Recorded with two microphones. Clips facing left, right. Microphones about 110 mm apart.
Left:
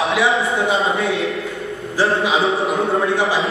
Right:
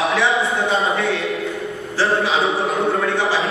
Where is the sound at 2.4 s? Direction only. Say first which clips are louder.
Left 1 dB; centre (ahead or behind).